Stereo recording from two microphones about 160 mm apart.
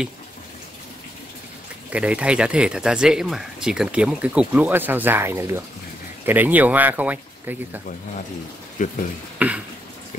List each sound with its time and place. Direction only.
1.9 s speech: 10° right (ahead or behind)
8.7 s speech: 55° left (ahead or behind)
9.4 s speech: 10° right (ahead or behind)